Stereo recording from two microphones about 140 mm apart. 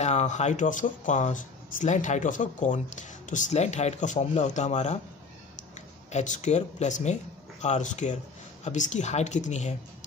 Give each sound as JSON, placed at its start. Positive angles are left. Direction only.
{"t": 0.0, "sound": "speech", "side_deg": 55}